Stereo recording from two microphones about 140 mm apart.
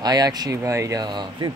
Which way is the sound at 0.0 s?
30° right (ahead or behind).